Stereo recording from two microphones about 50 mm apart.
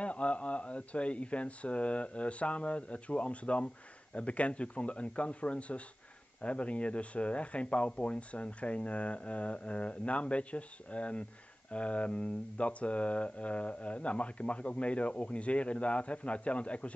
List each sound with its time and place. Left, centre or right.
0.0 s speech: left